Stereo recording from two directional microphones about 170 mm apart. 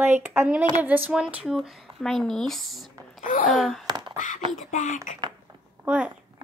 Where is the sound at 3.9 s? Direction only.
25° right (ahead or behind).